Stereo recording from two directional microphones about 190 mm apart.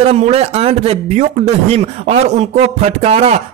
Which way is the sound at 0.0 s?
35° right (ahead or behind).